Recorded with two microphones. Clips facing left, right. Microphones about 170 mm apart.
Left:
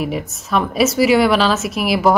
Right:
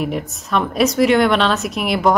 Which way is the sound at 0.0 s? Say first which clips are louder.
Even; centre (ahead or behind).